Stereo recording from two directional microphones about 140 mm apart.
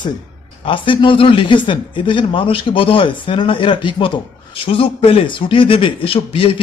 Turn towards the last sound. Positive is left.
turn(degrees=40)  # may be behind; listen again after turning